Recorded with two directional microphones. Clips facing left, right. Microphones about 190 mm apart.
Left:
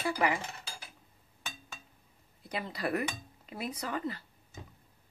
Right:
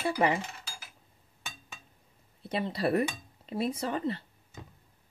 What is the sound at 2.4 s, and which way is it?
Speech, 30° right (ahead or behind).